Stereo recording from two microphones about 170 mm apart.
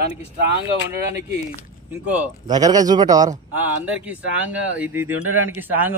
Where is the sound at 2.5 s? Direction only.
25° right (ahead or behind).